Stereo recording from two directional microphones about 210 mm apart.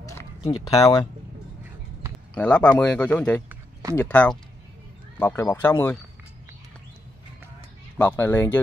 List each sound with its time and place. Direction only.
0.0 s a sound: 15° left (ahead or behind)
0.4 s speech: 25° left (ahead or behind)
2.3 s speech: 5° left (ahead or behind)
8.0 s speech: 10° left (ahead or behind)